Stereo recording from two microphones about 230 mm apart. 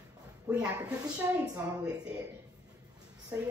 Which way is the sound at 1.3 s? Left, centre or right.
Centre.